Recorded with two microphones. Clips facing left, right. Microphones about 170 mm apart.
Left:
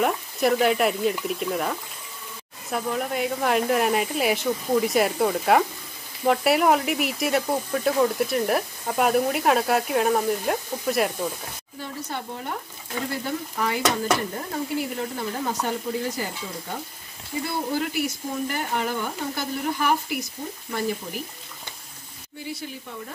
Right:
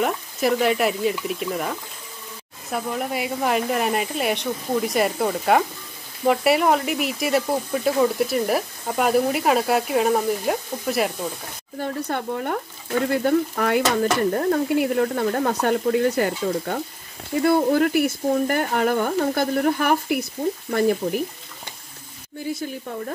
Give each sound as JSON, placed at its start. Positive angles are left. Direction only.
{"t": 0.0, "sound": "speech", "side_deg": 0}
{"t": 11.8, "sound": "speech", "side_deg": -55}
{"t": 22.5, "sound": "speech", "side_deg": -50}